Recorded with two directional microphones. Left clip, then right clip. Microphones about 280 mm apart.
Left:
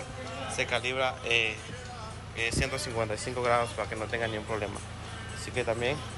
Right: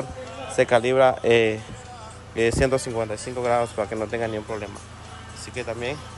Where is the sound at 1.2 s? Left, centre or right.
Right.